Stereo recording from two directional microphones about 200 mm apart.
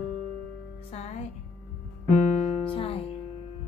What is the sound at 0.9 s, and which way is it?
Music, 30° left (ahead or behind).